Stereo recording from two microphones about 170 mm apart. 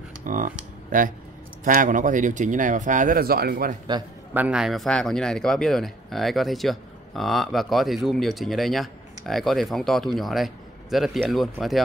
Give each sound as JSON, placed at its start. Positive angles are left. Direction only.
{"t": 0.2, "sound": "speech", "side_deg": -50}
{"t": 4.3, "sound": "a man's voice", "side_deg": -10}